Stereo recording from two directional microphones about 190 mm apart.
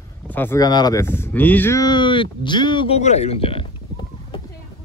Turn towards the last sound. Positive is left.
turn(degrees=30)  # may be behind; listen again after turning